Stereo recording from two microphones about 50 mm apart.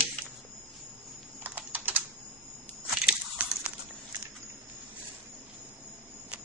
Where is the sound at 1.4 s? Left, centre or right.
Right.